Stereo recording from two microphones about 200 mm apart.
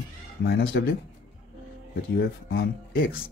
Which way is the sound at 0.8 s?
60° left (ahead or behind).